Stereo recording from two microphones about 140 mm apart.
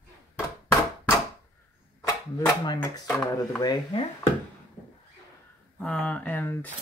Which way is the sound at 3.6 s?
35° left (ahead or behind).